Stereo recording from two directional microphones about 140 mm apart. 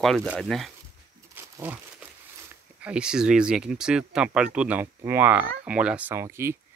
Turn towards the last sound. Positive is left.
turn(degrees=-15)  # may be behind; listen again after turning